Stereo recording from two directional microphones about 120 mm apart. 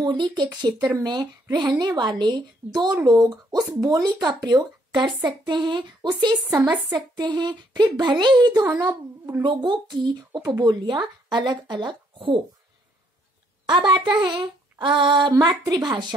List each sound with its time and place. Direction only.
0.0 s a woman's voice: 40° right (ahead or behind)
9.4 s a woman's voice: 40° right (ahead or behind)
13.7 s a woman's voice: 40° right (ahead or behind)